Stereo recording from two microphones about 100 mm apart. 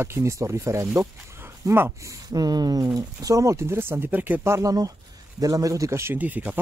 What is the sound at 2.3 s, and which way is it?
Speech, 40° right (ahead or behind).